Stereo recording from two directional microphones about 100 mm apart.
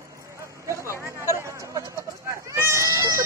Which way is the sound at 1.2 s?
30° right (ahead or behind).